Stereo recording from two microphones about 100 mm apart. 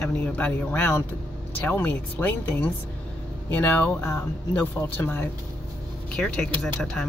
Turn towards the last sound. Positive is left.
turn(degrees=5)  # may be behind; listen again after turning